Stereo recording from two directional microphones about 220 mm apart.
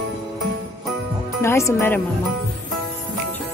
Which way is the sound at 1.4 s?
10° left (ahead or behind).